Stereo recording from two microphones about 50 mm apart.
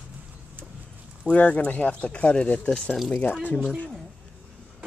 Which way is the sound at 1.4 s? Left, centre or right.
Left.